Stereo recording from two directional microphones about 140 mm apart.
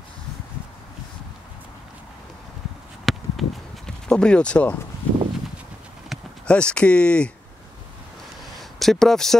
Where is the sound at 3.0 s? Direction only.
Centre (ahead or behind).